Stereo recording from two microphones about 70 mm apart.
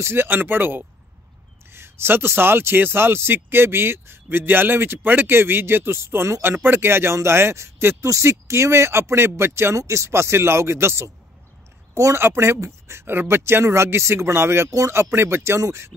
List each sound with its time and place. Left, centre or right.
0.0 s speech: right